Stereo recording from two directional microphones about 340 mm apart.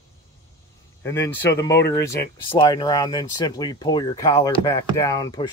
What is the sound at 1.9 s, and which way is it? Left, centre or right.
Speech, centre.